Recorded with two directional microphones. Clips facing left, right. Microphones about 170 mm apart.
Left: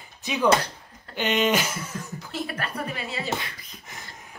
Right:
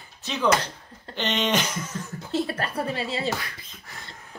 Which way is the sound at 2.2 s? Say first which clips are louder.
Right 6 dB; 30° right (ahead or behind).